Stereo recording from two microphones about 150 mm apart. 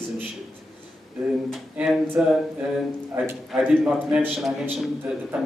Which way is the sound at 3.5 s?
5° right (ahead or behind).